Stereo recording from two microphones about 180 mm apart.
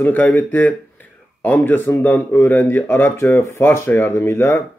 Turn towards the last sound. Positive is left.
turn(degrees=10)  # may be behind; listen again after turning